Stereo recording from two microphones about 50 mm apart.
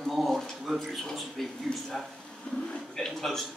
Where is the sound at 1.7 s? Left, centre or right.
Left.